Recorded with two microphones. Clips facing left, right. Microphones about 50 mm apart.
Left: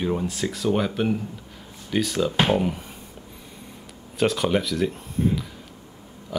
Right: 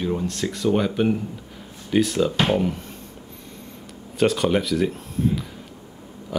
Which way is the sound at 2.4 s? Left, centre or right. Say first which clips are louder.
Even; centre.